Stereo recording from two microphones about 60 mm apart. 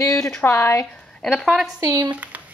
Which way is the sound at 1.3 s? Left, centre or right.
Centre.